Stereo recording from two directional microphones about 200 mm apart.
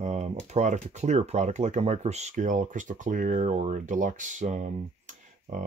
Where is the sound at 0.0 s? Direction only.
35° right (ahead or behind).